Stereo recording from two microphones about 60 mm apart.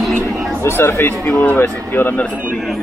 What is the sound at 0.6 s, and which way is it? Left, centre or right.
Speech, left.